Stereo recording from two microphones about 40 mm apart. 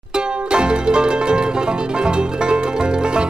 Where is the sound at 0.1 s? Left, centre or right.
Right.